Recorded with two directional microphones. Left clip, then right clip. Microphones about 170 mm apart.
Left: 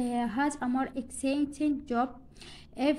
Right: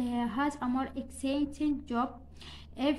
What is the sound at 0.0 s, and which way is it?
A woman's voice, 20° left (ahead or behind).